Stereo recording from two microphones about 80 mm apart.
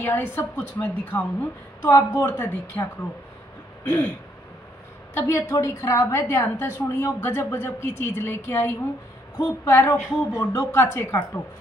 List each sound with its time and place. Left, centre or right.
0.0 s a woman's voice: left
5.1 s a woman's voice: left